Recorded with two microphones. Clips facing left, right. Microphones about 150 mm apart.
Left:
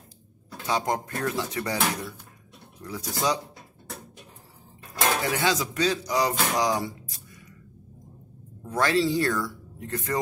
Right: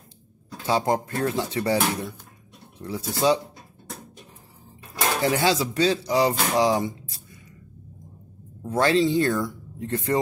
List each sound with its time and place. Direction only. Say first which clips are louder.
0.7 s speech: right 4 dB; 30° right (ahead or behind)
5.2 s speech: right 4 dB; 30° right (ahead or behind)
8.6 s speech: right 3 dB; 25° right (ahead or behind)